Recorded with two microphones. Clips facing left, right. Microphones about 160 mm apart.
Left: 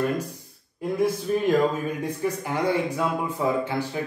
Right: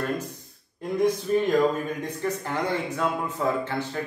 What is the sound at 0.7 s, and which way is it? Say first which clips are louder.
Speech: even; 5° left (ahead or behind).